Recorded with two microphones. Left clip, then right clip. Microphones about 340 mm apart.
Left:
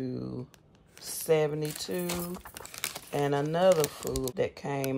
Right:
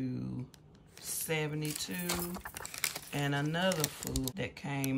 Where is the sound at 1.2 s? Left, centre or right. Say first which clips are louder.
Left 10 dB; centre.